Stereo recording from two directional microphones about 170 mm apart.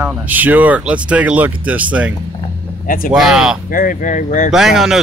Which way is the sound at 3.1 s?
Centre (ahead or behind).